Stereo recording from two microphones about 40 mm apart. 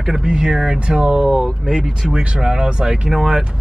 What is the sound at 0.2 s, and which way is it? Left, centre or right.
Speech, right.